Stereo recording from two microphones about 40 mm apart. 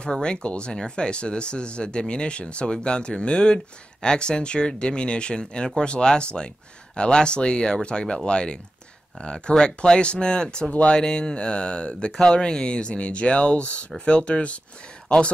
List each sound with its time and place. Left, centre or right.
0.0 s speech: left